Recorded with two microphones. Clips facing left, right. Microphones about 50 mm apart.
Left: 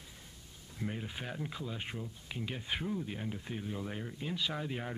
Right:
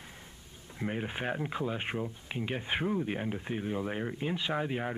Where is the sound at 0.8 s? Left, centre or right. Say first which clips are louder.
Right 6 dB; right.